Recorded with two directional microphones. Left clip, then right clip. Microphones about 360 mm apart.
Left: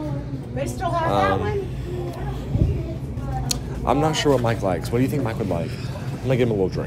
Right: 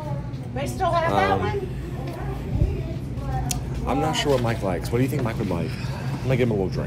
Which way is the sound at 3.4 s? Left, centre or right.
Centre.